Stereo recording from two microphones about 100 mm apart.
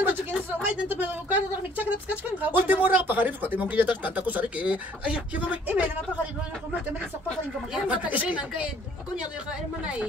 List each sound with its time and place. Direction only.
0.0 s speech: 20° right (ahead or behind)
7.7 s speech: 15° right (ahead or behind)